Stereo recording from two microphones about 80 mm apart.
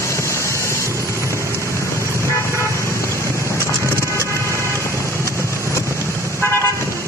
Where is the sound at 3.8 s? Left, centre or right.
Right.